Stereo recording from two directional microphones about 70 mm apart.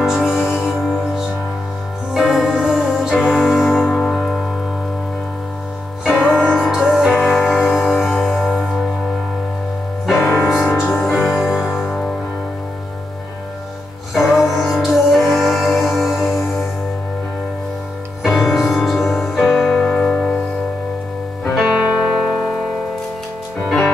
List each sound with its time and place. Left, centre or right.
0.0 s music: centre
3.8 s music: centre
6.0 s music: centre
10.1 s music: left
10.6 s music: centre
11.1 s music: centre
14.1 s music: centre
18.2 s music: centre
21.5 s music: centre